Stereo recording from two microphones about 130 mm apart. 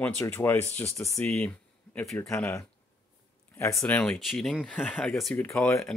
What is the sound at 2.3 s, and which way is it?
Speech, 20° left (ahead or behind).